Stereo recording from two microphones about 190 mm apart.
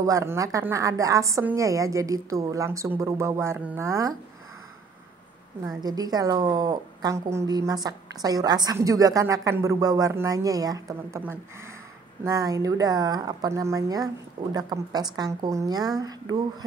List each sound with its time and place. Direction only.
0.0 s a woman's voice: 15° right (ahead or behind)
5.8 s a woman's voice: 20° right (ahead or behind)